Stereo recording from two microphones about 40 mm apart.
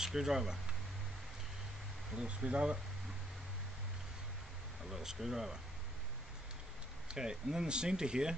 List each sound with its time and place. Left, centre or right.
0.0 s speech: centre
2.1 s speech: right
4.8 s speech: centre
7.2 s speech: centre